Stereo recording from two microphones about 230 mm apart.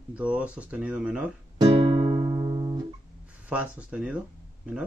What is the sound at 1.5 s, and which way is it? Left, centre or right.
Music, right.